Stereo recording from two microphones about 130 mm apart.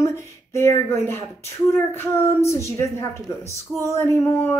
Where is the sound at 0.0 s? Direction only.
20° left (ahead or behind).